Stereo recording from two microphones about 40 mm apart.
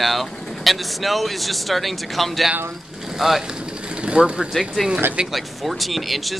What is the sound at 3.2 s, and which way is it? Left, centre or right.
Speech, centre.